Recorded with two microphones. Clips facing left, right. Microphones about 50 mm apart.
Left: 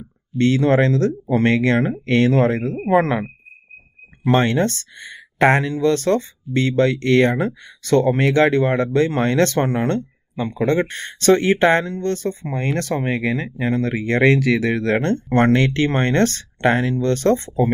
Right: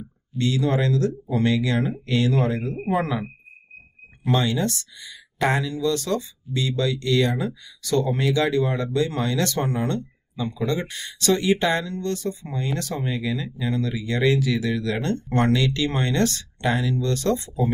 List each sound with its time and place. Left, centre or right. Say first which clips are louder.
0.4 s speech: left 7 dB; left
4.3 s speech: left 6 dB; left